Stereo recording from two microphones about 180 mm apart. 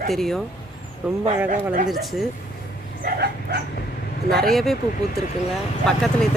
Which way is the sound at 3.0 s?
60° right (ahead or behind).